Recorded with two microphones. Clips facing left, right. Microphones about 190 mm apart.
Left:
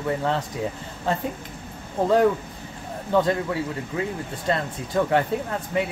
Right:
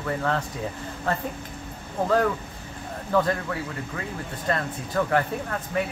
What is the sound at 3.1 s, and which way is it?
Speech, 20° left (ahead or behind).